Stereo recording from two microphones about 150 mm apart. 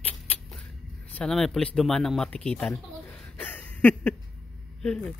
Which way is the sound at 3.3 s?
10° left (ahead or behind).